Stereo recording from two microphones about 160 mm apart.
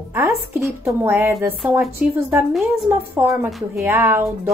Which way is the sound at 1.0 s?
10° right (ahead or behind).